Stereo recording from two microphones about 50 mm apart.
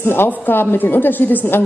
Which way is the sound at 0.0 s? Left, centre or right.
Left.